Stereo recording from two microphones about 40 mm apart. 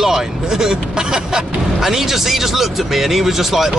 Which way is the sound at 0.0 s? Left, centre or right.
Centre.